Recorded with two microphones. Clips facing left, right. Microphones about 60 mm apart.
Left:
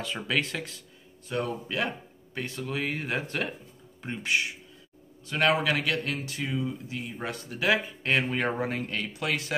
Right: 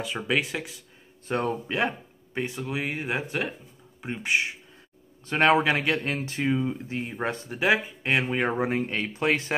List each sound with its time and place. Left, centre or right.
0.0 s speech: centre
1.2 s speech: right
1.7 s speech: right